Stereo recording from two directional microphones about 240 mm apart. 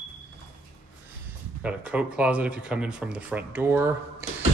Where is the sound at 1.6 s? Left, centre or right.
Centre.